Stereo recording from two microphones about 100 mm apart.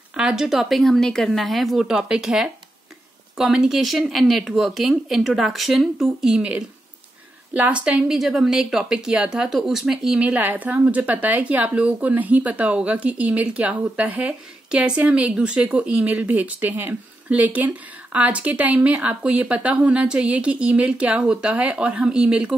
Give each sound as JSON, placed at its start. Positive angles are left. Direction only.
{"t": 0.1, "sound": "a woman's voice", "side_deg": -10}
{"t": 10.2, "sound": "a woman's voice", "side_deg": -15}